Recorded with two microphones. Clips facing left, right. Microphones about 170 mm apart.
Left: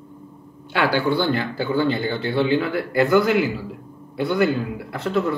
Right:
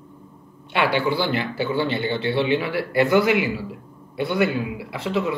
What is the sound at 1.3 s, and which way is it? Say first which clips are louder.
Speech: left 1 dB; 70° right (ahead or behind).